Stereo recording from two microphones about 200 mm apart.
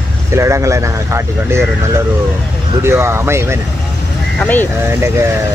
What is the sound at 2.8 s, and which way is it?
Speech, 15° right (ahead or behind).